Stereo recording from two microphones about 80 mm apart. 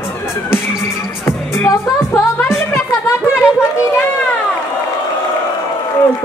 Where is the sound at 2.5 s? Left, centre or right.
Left.